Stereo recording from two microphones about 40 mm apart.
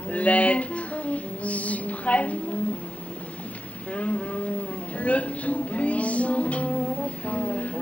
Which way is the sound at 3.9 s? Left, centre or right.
Left.